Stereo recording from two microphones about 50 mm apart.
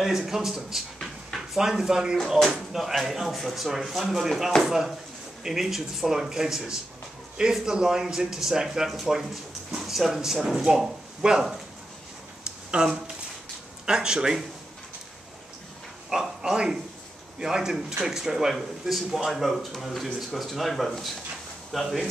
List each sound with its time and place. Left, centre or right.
0.0 s speech: centre
12.7 s speech: centre
16.1 s speech: centre